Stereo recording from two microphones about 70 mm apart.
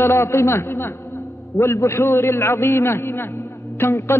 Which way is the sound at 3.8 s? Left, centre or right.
Left.